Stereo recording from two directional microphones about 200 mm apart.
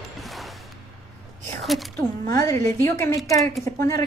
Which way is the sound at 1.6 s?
Centre (ahead or behind).